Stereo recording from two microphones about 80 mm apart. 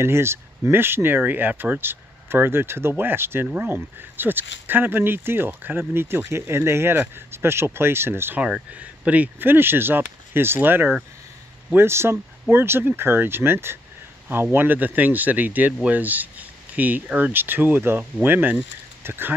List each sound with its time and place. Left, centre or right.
0.0 s speech: right
8.4 s speech: centre; by 19.3 s right